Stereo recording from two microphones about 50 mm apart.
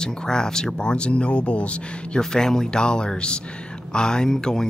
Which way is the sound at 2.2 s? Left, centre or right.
Centre.